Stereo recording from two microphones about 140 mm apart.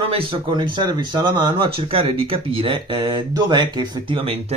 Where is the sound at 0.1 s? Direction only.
35° right (ahead or behind).